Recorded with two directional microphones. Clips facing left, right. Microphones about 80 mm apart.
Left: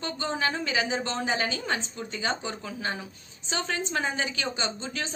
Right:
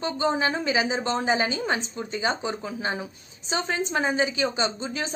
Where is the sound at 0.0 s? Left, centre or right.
Centre.